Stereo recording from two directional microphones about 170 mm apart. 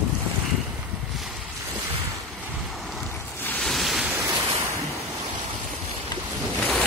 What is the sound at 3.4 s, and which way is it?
Waves, 5° left (ahead or behind).